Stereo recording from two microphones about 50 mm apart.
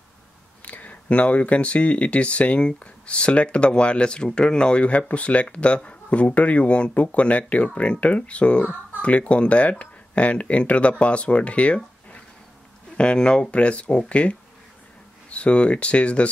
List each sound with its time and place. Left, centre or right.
0.7 s speech: left